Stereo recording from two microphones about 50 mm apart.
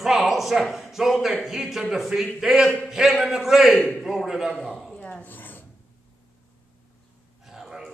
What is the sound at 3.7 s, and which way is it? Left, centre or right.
Speech, left.